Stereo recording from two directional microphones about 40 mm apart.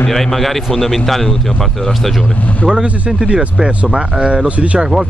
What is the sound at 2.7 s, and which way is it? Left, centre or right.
Speech, right.